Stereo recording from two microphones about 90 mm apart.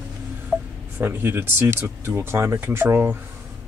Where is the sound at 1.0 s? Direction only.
25° right (ahead or behind).